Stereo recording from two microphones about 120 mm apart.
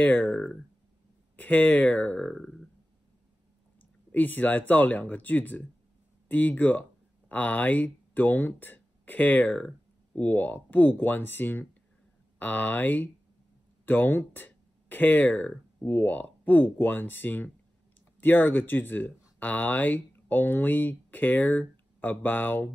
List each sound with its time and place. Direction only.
0.0 s speech: 15° left (ahead or behind)
4.1 s speech: 15° left (ahead or behind)